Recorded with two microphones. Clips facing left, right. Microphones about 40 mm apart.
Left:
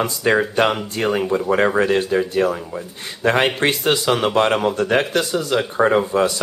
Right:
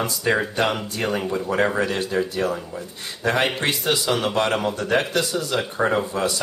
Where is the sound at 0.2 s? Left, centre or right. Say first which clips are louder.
Left 4 dB; left.